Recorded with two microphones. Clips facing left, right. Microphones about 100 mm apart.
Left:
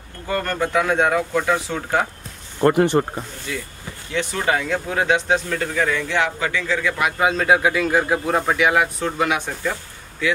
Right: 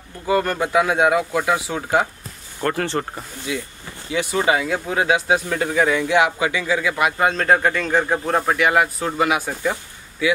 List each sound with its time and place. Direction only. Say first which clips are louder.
0.3 s speech: right 3 dB; 10° right (ahead or behind)
2.6 s speech: left 6 dB; 15° left (ahead or behind)
3.5 s speech: right 2 dB; 10° right (ahead or behind)